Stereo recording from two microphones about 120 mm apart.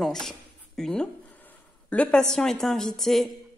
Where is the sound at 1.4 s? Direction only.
10° left (ahead or behind).